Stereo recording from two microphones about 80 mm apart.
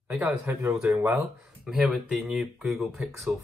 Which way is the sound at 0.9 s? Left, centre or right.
Right.